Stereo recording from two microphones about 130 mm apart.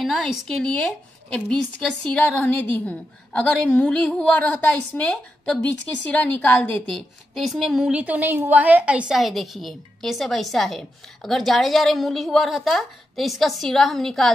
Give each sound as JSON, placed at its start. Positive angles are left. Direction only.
{"t": 0.0, "sound": "speech", "side_deg": 0}
{"t": 7.3, "sound": "a woman's voice", "side_deg": 0}
{"t": 9.1, "sound": "a woman's voice", "side_deg": 0}